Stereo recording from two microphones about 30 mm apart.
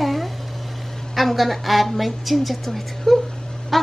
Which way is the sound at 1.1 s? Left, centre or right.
Centre.